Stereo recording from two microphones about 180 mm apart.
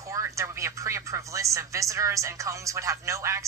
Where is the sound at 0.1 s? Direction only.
15° right (ahead or behind).